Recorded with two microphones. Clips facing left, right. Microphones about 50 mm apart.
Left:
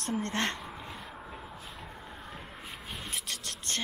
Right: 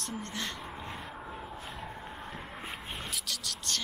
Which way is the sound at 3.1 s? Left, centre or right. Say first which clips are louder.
Even; left.